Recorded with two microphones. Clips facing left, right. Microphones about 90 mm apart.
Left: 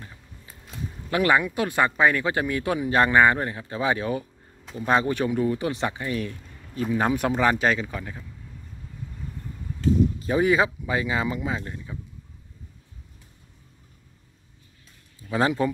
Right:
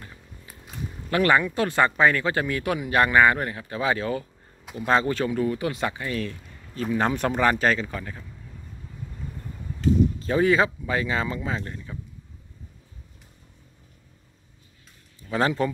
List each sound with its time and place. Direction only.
1.1 s speech: 15° left (ahead or behind)
10.1 s speech: 15° left (ahead or behind)
15.2 s speech: 15° left (ahead or behind)